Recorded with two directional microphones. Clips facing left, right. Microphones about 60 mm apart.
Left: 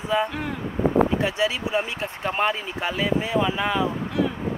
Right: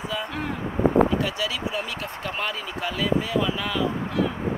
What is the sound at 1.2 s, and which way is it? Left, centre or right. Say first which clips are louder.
Speech: left 3 dB; left.